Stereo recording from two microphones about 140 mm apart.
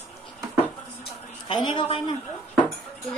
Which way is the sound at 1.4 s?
35° left (ahead or behind).